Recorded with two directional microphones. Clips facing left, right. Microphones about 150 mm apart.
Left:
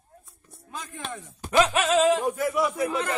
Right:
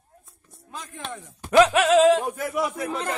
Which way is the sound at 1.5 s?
70° right (ahead or behind).